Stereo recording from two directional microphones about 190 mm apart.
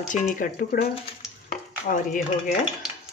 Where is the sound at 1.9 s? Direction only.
45° left (ahead or behind).